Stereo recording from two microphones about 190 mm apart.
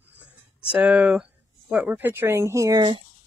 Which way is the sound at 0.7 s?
5° right (ahead or behind).